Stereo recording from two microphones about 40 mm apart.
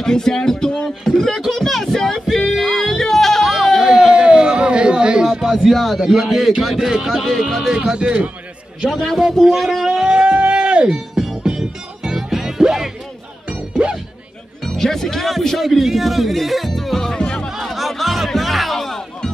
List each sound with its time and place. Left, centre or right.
0.0 s speech: centre
0.8 s music: centre
3.8 s a sound: centre
5.5 s a man's voice: centre
7.7 s speech: right
9.5 s speech: centre; by 11.0 s right
11.4 s music: centre
13.8 s music: right
14.6 s speech: centre
17.5 s music: centre